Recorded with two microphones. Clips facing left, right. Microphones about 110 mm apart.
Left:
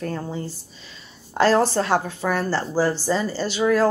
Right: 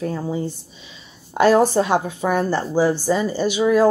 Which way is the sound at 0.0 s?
10° right (ahead or behind).